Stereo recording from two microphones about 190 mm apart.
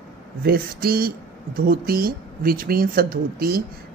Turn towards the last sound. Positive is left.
turn(degrees=-50)  # may be behind; listen again after turning